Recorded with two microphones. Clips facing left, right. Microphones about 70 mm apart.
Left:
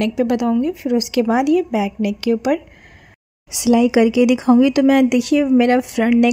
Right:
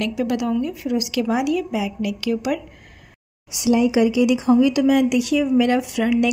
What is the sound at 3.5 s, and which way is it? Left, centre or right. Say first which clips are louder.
Speech: left 4 dB; left.